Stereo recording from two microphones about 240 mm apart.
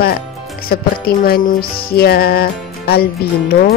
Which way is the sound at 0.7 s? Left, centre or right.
Left.